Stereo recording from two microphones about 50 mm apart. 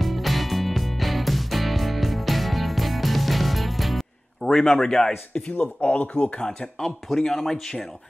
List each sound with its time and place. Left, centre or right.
0.0 s music: centre
4.4 s a man's voice: centre
5.3 s speech: left
6.4 s speech: centre